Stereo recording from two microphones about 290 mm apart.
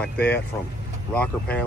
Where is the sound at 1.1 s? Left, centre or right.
Centre.